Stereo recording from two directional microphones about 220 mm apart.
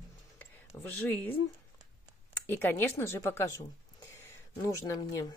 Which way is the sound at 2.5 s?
10° left (ahead or behind).